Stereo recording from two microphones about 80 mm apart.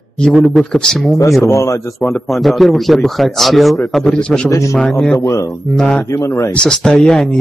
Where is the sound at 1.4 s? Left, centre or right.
Left.